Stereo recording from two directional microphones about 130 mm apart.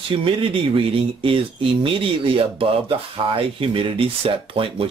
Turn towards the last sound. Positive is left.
turn(degrees=-45)  # may be behind; listen again after turning